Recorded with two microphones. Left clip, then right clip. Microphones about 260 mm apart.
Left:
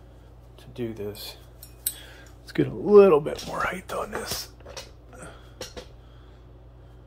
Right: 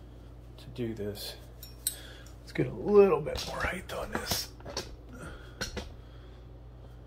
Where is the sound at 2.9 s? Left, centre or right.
Left.